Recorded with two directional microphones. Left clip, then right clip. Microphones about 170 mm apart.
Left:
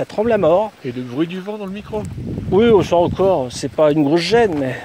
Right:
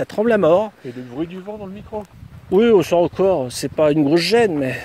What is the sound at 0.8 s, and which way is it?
Speech, 50° left (ahead or behind).